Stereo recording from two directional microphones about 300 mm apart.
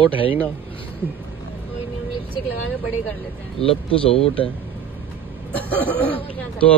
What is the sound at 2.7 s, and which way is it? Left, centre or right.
Speech, centre.